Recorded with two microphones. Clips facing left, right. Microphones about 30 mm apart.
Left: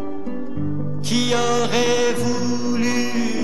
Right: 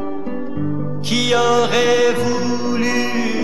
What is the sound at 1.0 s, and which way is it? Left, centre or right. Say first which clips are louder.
Music: right 4 dB; right.